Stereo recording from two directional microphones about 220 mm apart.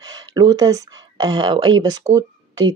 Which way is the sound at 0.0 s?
15° right (ahead or behind).